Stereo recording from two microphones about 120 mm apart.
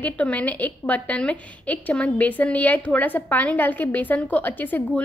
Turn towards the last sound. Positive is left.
turn(degrees=15)  # may be behind; listen again after turning